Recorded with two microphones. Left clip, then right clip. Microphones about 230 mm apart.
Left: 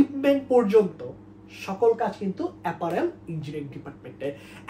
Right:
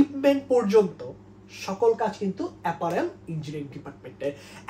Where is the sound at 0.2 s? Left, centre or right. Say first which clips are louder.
Left 2 dB; centre.